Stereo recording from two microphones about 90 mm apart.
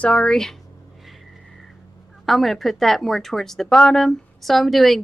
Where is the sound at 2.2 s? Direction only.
Centre (ahead or behind).